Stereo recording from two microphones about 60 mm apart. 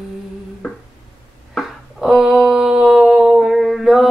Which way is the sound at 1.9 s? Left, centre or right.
Centre.